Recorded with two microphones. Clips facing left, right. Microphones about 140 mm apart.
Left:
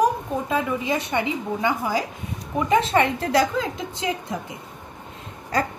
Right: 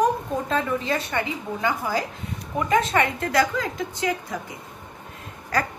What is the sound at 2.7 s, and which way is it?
A woman's voice, 30° left (ahead or behind).